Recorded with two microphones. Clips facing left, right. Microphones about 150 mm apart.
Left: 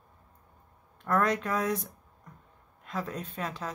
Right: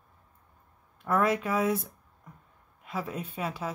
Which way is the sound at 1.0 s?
5° right (ahead or behind).